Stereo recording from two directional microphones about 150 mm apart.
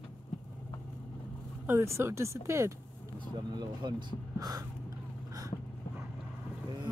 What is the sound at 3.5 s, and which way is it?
Speech, 30° right (ahead or behind).